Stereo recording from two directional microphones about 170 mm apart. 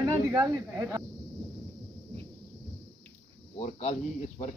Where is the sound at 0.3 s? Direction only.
20° right (ahead or behind).